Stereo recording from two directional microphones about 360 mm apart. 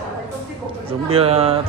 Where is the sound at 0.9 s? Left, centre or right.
Centre.